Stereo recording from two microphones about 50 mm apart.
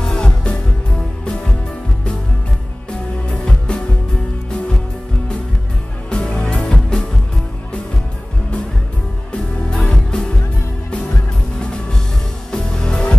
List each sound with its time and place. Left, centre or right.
0.0 s music: centre
3.4 s music: centre
6.0 s music: left
9.7 s music: centre
12.4 s music: centre